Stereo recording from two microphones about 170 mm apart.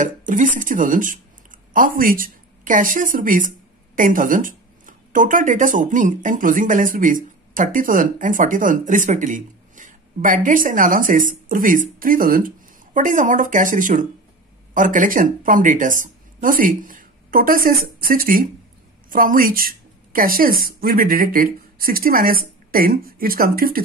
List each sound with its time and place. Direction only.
0.0 s a woman's voice: 50° right (ahead or behind)